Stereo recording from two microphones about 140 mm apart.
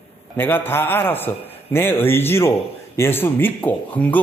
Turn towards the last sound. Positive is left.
turn(degrees=10)  # may be behind; listen again after turning